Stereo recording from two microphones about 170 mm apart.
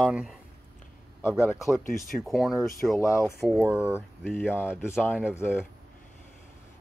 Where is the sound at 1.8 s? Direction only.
55° left (ahead or behind).